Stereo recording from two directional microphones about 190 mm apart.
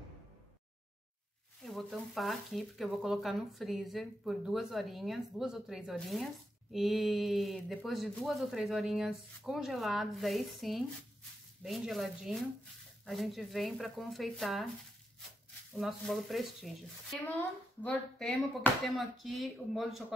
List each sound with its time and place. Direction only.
1.6 s speech: centre (ahead or behind)
15.7 s speech: centre (ahead or behind)